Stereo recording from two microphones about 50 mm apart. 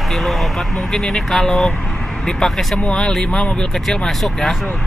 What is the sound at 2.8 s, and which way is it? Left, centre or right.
Speech, centre.